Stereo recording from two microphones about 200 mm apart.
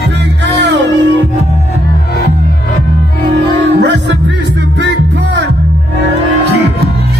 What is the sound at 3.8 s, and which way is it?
Music, 60° right (ahead or behind).